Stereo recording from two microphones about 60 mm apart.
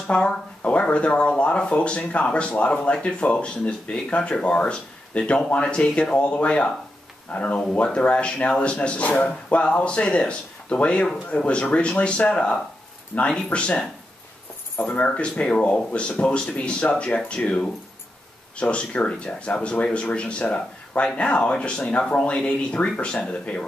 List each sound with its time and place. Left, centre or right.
0.0 s speech: centre